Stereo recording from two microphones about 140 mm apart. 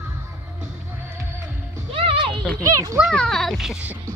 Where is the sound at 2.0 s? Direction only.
40° right (ahead or behind).